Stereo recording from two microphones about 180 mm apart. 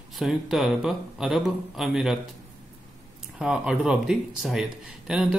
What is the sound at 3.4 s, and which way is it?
Speech, 5° right (ahead or behind).